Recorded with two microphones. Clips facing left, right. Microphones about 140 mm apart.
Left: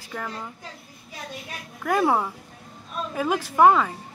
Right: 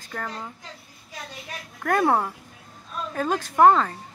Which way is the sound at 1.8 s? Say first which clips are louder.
Even; centre (ahead or behind).